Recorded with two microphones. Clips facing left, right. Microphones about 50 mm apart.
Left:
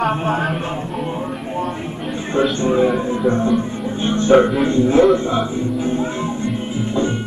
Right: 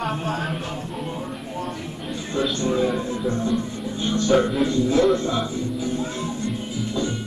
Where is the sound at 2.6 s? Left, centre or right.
Left.